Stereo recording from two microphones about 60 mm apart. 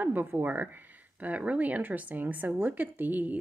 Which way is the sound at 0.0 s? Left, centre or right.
Right.